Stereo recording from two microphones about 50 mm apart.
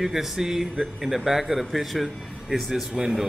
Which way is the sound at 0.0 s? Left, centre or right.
Centre.